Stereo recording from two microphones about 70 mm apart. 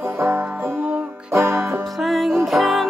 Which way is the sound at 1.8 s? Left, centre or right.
Centre.